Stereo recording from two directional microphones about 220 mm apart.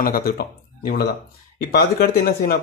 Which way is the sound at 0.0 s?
40° left (ahead or behind).